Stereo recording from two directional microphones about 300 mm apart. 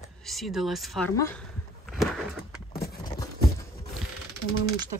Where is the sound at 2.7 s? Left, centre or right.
Left.